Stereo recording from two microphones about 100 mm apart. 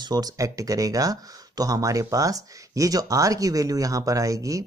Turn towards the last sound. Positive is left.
turn(degrees=-35)  # may be behind; listen again after turning